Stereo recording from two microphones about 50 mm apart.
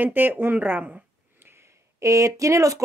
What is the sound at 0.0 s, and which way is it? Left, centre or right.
Speech, right.